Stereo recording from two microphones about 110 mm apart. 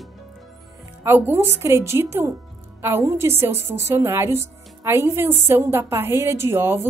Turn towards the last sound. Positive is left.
turn(degrees=-20)  # may be behind; listen again after turning